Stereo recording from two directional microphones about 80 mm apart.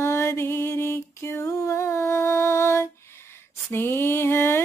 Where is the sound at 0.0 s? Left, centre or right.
Left.